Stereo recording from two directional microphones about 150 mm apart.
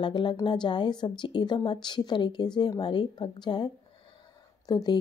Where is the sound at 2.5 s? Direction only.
30° left (ahead or behind).